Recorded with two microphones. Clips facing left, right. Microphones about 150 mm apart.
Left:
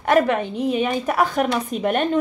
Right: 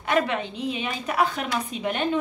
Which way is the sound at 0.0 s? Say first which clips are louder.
Left 6 dB; 50° left (ahead or behind).